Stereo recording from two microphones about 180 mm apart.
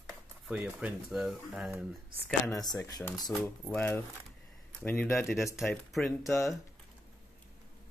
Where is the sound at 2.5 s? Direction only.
20° left (ahead or behind).